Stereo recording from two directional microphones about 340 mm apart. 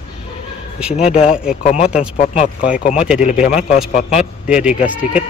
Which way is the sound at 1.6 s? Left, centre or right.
Centre.